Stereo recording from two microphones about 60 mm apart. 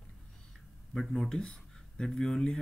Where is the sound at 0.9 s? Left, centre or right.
Centre.